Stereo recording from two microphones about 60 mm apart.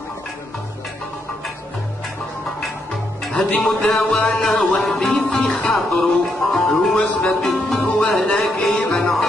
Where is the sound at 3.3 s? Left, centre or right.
Centre.